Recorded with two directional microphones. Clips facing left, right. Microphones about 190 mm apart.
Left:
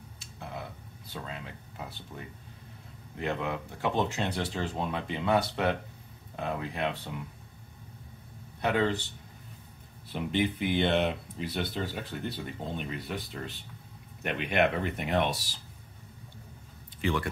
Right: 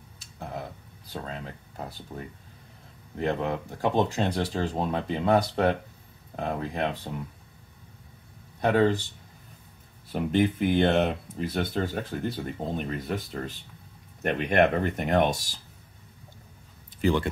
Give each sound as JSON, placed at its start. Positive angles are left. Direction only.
{"t": 0.2, "sound": "a sound", "side_deg": -40}
{"t": 3.2, "sound": "speech", "side_deg": -40}
{"t": 8.5, "sound": "speech", "side_deg": -40}
{"t": 10.0, "sound": "speech", "side_deg": -45}
{"t": 17.0, "sound": "speech", "side_deg": -30}